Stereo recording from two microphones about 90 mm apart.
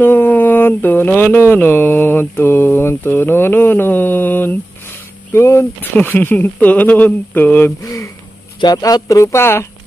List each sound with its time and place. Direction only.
0.0 s speech: 20° left (ahead or behind)
5.9 s speech: 20° left (ahead or behind)
7.8 s speech: 35° left (ahead or behind)
8.5 s speech: 45° left (ahead or behind); by 9.7 s 30° left (ahead or behind)